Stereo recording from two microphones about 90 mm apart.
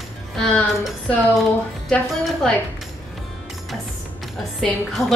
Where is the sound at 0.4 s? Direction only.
10° left (ahead or behind).